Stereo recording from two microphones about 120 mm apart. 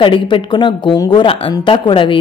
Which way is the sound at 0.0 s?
40° left (ahead or behind).